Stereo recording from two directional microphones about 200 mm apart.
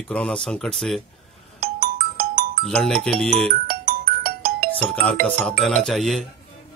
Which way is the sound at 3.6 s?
45° right (ahead or behind).